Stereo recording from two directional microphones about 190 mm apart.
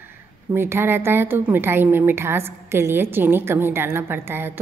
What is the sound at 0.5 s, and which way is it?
A woman's voice, 10° right (ahead or behind).